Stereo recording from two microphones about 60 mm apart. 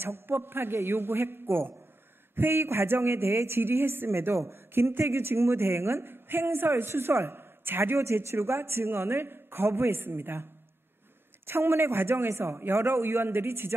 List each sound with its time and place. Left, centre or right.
0.0 s a man's voice: right